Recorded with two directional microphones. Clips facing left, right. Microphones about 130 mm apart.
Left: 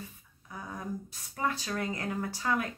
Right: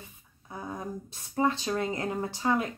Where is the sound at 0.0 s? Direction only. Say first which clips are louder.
Left 4 dB; 25° right (ahead or behind).